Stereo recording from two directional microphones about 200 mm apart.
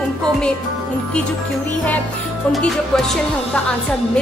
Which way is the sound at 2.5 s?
Centre (ahead or behind).